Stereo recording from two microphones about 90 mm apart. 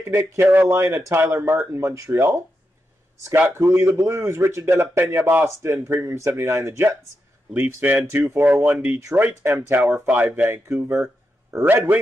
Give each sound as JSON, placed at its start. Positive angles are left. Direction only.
{"t": 0.0, "sound": "a man's voice", "side_deg": -25}
{"t": 3.5, "sound": "a man's voice", "side_deg": -35}